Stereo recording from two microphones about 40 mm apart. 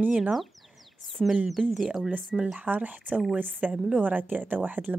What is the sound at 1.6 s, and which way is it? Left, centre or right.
Speech, centre.